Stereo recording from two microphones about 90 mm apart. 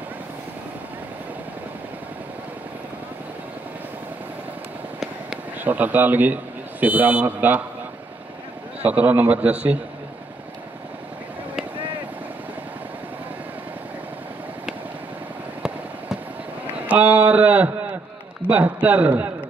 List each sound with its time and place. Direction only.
5.6 s a man's voice: 20° right (ahead or behind)
8.8 s a man's voice: 20° right (ahead or behind)
16.7 s a sound: 15° right (ahead or behind)
18.5 s a man's voice: 20° right (ahead or behind)